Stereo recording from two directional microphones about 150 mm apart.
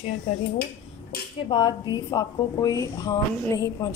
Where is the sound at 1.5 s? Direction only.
30° left (ahead or behind).